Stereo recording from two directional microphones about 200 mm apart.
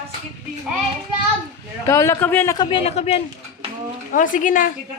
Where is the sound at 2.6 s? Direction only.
25° left (ahead or behind).